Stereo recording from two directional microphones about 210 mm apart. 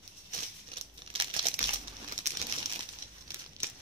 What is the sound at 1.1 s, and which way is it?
Crumpling, 25° right (ahead or behind).